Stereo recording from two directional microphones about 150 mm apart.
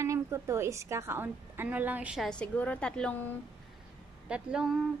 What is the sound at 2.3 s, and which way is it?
Speech, 10° left (ahead or behind).